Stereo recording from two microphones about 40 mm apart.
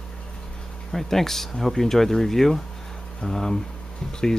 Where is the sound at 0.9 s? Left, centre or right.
Centre.